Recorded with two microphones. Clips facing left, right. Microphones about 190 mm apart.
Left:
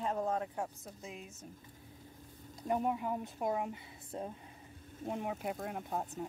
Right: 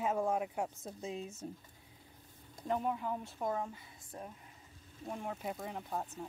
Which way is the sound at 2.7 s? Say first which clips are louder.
Left 2 dB; 10° left (ahead or behind).